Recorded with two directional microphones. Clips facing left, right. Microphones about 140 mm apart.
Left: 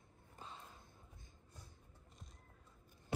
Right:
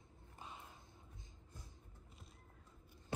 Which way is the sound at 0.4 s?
15° right (ahead or behind).